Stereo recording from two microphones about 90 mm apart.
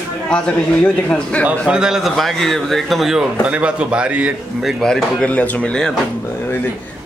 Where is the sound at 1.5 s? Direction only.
10° right (ahead or behind).